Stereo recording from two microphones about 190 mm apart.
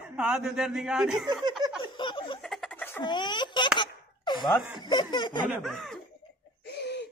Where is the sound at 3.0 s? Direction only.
25° left (ahead or behind).